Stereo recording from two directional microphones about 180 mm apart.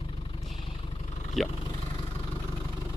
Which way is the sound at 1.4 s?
Centre (ahead or behind).